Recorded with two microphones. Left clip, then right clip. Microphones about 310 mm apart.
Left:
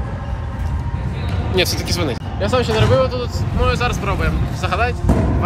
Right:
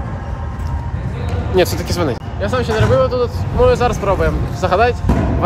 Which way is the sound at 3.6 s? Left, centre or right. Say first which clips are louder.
Right 7 dB; right.